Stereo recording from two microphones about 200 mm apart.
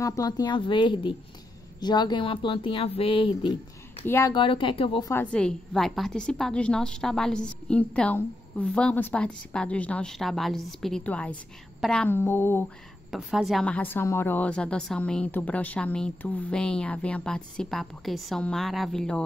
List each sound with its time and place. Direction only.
0.0 s speech: 15° left (ahead or behind)
4.0 s speech: 15° left (ahead or behind)
5.1 s a woman's voice: 5° left (ahead or behind)
13.1 s a woman's voice: centre (ahead or behind)